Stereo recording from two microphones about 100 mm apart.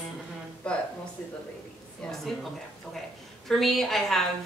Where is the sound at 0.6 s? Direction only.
10° left (ahead or behind).